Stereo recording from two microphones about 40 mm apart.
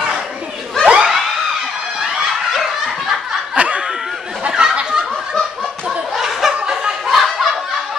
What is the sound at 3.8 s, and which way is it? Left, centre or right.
Snicker, centre.